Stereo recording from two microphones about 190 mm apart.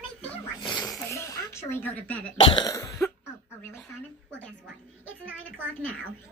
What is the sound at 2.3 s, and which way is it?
Cough, 25° left (ahead or behind).